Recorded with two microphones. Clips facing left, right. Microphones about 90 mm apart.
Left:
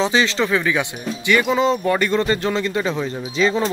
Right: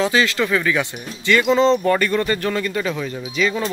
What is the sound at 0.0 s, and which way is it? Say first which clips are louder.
Speech: even; 25° left (ahead or behind).